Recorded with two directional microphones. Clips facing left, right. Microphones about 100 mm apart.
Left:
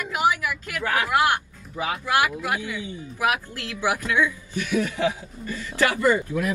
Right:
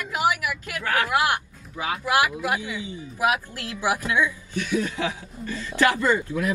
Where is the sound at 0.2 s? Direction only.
15° right (ahead or behind).